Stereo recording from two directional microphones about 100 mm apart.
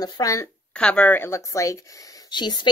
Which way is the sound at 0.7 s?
10° left (ahead or behind).